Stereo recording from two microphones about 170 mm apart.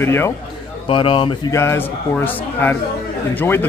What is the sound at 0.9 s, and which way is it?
Speech, 30° left (ahead or behind).